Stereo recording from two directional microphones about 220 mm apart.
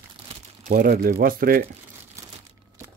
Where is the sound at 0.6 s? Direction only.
40° right (ahead or behind).